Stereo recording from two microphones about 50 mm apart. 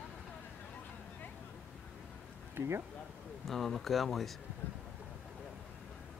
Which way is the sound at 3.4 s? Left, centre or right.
Centre.